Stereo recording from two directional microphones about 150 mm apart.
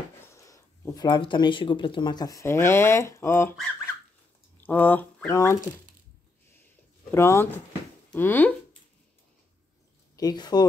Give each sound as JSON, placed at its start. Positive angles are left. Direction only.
{"t": 0.5, "sound": "speech", "side_deg": 25}
{"t": 4.6, "sound": "speech", "side_deg": 10}
{"t": 7.1, "sound": "speech", "side_deg": 15}
{"t": 10.1, "sound": "speech", "side_deg": 25}